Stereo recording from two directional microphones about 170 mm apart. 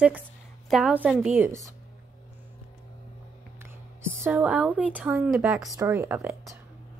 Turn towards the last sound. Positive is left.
turn(degrees=-15)  # may be behind; listen again after turning